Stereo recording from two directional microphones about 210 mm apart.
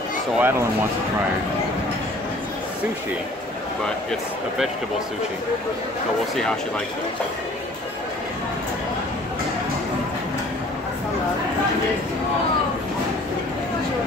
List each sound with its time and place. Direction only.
0.4 s speech: 10° right (ahead or behind)